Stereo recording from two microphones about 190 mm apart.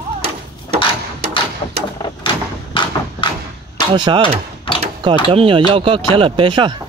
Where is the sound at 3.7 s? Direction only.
25° right (ahead or behind).